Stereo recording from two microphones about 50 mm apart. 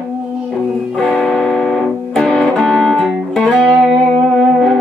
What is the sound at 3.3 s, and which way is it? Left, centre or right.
Music, centre.